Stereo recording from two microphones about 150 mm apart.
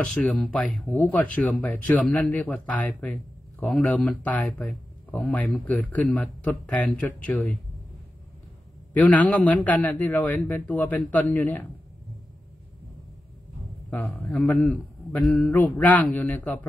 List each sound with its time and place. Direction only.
0.0 s speech: 5° left (ahead or behind)
8.9 s speech: 10° left (ahead or behind)
13.8 s speech: 10° left (ahead or behind)